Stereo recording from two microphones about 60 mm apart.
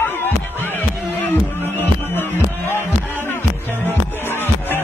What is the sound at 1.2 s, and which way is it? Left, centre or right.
Music, left.